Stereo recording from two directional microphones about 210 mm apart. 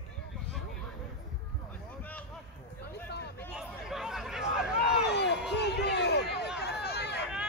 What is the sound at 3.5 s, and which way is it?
Chatter, centre (ahead or behind).